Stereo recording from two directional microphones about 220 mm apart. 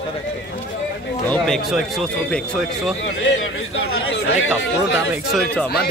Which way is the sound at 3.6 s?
60° left (ahead or behind).